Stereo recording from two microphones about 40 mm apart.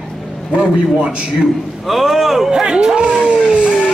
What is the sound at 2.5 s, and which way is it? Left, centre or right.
Speech, centre.